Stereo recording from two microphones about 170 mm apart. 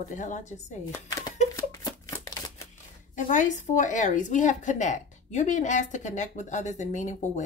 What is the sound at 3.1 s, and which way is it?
Speech, 45° left (ahead or behind).